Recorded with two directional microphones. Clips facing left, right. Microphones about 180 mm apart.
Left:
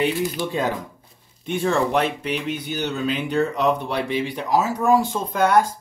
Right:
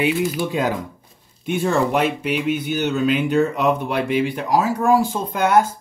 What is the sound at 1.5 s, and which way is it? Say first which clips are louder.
Speech: right 2 dB; 5° right (ahead or behind).